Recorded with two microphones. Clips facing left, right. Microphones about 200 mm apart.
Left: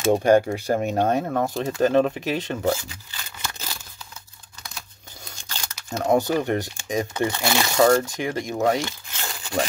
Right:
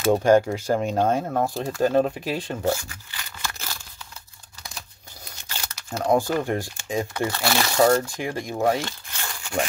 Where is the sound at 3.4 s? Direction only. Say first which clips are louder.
Even; 15° left (ahead or behind).